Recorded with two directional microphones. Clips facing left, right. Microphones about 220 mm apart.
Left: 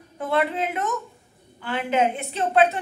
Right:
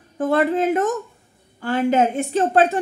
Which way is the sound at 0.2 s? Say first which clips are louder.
Right 6 dB; 45° right (ahead or behind).